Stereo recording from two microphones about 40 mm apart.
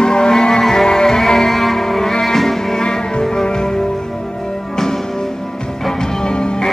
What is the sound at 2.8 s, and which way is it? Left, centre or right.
Music, centre.